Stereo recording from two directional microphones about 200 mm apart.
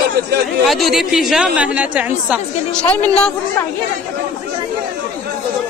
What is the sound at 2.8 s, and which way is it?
Speech, 10° left (ahead or behind).